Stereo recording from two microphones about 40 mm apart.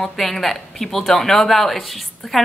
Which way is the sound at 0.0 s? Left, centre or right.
Centre.